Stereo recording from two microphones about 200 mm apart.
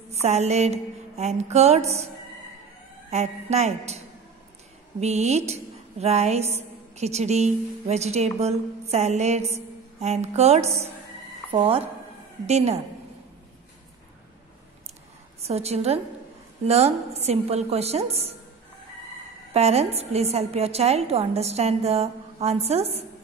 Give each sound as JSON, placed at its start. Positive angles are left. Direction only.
{"t": 0.1, "sound": "a woman's voice", "side_deg": -35}
{"t": 3.1, "sound": "a woman's voice", "side_deg": -35}
{"t": 5.0, "sound": "a woman's voice", "side_deg": -35}
{"t": 15.4, "sound": "a woman's voice", "side_deg": -30}
{"t": 19.5, "sound": "a woman's voice", "side_deg": -30}